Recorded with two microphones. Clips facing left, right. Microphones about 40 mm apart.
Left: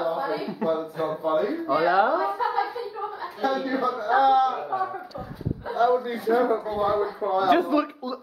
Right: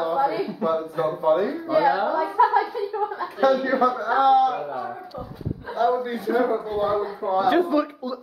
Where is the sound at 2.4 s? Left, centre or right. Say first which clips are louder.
Right 8 dB; right.